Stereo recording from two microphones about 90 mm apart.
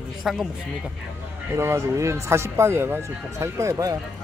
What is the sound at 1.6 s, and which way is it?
Speech, 35° right (ahead or behind).